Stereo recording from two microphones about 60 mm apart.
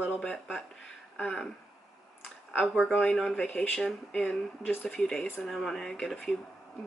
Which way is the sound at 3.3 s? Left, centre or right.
Left.